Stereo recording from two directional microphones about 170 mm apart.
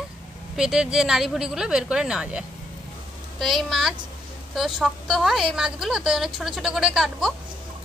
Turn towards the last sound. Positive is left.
turn(degrees=-5)  # may be behind; listen again after turning